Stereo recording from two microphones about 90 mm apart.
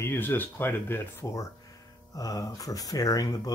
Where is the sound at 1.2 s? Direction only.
35° left (ahead or behind).